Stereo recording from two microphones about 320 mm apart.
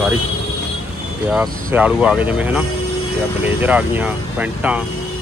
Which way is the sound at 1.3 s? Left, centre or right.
Centre.